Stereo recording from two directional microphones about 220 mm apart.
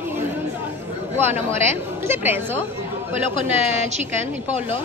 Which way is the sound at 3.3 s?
30° right (ahead or behind).